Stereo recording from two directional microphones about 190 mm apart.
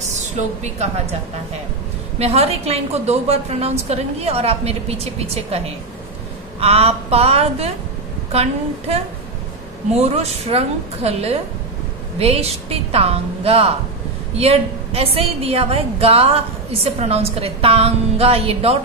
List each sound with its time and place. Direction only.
2.1 s a woman's voice: 35° right (ahead or behind)
6.6 s a woman's voice: 30° right (ahead or behind)